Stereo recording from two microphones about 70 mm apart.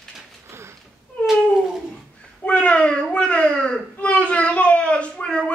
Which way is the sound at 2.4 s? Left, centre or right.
Centre.